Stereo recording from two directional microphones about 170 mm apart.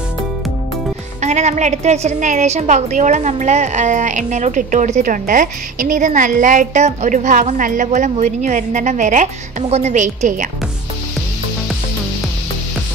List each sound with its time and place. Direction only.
1.2 s a woman's voice: 45° right (ahead or behind)